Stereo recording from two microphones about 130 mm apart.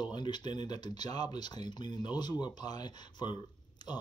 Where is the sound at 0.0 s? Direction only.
35° left (ahead or behind).